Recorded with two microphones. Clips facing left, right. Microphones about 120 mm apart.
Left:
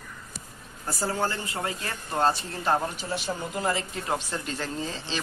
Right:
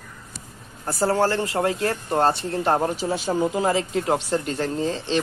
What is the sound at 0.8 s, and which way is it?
Speech, 55° right (ahead or behind).